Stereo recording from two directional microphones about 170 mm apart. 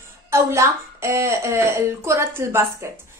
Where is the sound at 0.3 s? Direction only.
15° right (ahead or behind).